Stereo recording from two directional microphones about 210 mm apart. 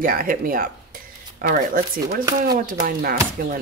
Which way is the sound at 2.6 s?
40° right (ahead or behind).